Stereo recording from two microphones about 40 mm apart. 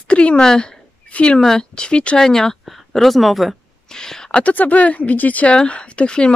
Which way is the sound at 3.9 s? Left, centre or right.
Centre.